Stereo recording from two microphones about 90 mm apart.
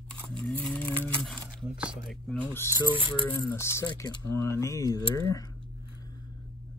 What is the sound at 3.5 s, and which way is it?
Speech, 30° left (ahead or behind).